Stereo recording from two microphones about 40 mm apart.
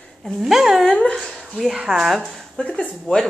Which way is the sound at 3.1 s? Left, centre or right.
Left.